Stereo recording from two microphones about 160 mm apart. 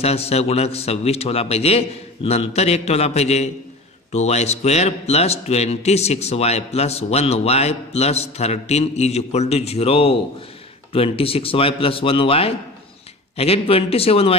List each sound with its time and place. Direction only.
0.0 s a man's voice: 40° left (ahead or behind)